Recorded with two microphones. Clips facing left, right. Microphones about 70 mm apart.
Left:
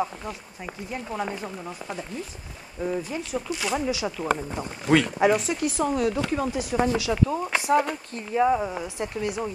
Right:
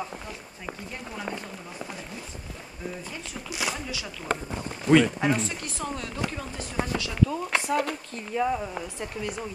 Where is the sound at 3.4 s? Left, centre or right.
Centre.